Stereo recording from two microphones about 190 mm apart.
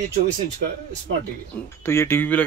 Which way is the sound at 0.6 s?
55° right (ahead or behind).